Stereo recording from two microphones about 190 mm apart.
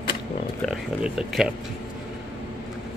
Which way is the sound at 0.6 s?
5° right (ahead or behind).